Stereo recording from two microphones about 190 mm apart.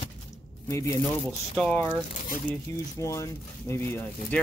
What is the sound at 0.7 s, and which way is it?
Speech, 15° left (ahead or behind).